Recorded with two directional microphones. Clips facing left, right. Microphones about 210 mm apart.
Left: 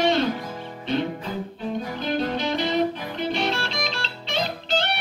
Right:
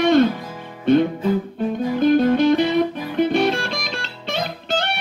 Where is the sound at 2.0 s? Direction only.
50° right (ahead or behind).